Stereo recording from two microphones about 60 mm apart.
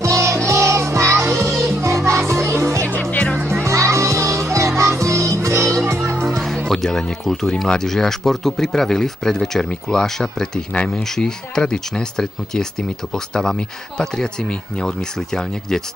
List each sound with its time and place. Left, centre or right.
0.0 s music: right
3.0 s music: left
3.5 s music: right
5.9 s music: right
6.3 s music: centre
6.7 s speech: centre